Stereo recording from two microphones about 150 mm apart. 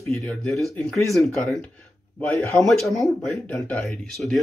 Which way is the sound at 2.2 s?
15° left (ahead or behind).